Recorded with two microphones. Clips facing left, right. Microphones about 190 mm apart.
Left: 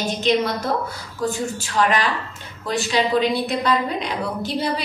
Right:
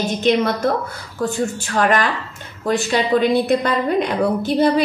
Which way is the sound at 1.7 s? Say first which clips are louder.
Right 2 dB; 50° right (ahead or behind).